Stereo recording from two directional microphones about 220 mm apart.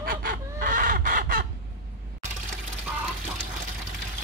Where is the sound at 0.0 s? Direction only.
40° right (ahead or behind).